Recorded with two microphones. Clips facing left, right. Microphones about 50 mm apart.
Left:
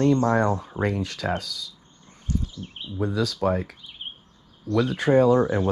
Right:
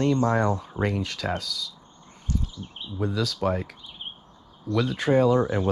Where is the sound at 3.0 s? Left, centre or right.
Left.